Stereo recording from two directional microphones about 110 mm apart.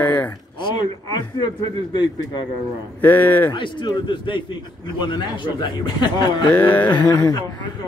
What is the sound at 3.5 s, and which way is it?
A man's voice, 45° left (ahead or behind).